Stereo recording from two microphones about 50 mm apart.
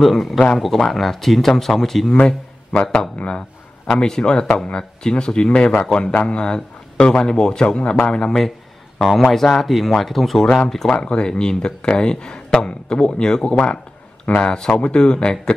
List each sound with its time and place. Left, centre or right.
0.0 s speech: centre
2.1 s a man's voice: centre
3.8 s a man's voice: centre
9.2 s speech: centre
10.9 s a man's voice: centre